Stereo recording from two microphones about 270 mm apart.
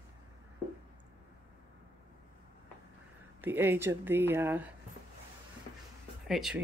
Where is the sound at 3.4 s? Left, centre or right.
Centre.